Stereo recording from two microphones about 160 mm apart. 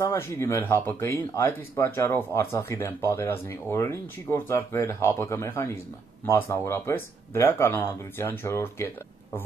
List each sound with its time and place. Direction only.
0.0 s speech: 15° left (ahead or behind)